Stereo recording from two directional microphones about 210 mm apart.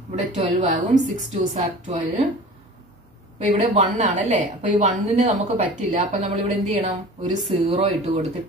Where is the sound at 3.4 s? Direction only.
35° right (ahead or behind).